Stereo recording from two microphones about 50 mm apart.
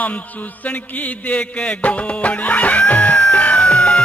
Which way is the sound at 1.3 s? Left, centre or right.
Left.